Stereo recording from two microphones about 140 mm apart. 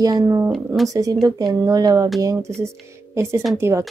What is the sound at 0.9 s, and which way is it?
Speech, 25° right (ahead or behind).